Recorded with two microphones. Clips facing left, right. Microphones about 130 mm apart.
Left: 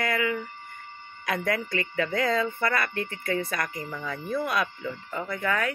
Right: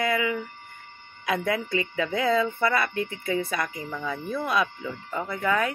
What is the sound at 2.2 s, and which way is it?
Speech, 5° right (ahead or behind).